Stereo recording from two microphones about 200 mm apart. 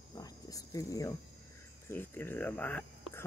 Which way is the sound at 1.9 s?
10° left (ahead or behind).